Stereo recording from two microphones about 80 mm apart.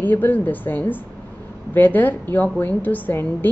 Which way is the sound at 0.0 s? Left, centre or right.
Left.